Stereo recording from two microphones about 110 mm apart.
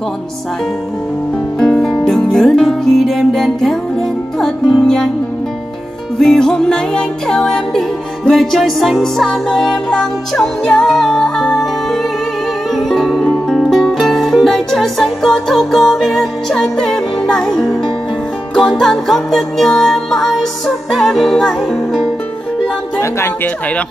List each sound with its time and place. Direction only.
1.6 s music: 5° left (ahead or behind)
4.8 s music: 5° left (ahead or behind)
6.1 s music: 5° left (ahead or behind)
22.9 s speech: 20° left (ahead or behind)